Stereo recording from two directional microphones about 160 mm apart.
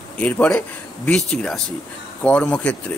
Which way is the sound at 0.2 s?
10° left (ahead or behind).